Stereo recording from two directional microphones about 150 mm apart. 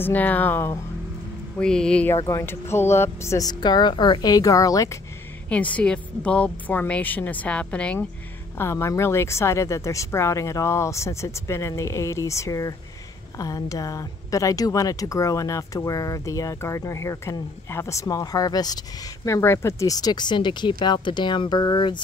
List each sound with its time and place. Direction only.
0.0 s a woman's voice: 10° left (ahead or behind)
2.1 s speech: 20° left (ahead or behind)
5.5 s a woman's voice: 10° left (ahead or behind); by 22.0 s 30° left (ahead or behind)